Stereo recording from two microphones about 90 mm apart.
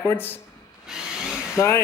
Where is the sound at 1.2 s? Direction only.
10° right (ahead or behind).